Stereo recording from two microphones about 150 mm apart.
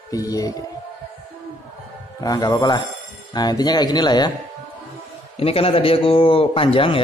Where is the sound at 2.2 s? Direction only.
25° left (ahead or behind).